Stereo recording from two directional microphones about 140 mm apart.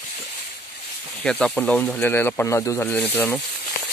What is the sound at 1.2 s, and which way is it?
Speech, 5° left (ahead or behind).